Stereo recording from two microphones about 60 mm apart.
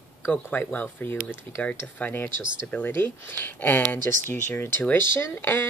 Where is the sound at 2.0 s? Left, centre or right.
Left.